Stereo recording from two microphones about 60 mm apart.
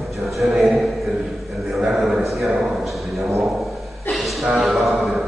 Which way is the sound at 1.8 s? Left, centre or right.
Centre.